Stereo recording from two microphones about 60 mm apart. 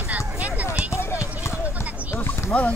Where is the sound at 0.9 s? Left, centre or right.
Left.